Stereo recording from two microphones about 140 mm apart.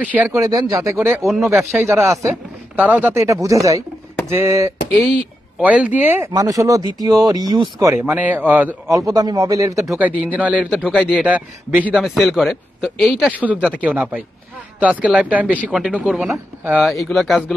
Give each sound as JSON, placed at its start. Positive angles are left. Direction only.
{"t": 0.0, "sound": "speech", "side_deg": -10}
{"t": 0.4, "sound": "speech", "side_deg": -25}
{"t": 1.2, "sound": "a man's voice", "side_deg": 0}
{"t": 1.8, "sound": "speech", "side_deg": -20}
{"t": 7.9, "sound": "speech", "side_deg": -10}
{"t": 8.8, "sound": "speech", "side_deg": -25}
{"t": 9.8, "sound": "speech", "side_deg": -15}
{"t": 12.0, "sound": "a man's voice", "side_deg": 0}